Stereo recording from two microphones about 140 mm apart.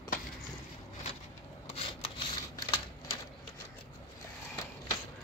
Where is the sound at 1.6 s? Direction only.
45° left (ahead or behind).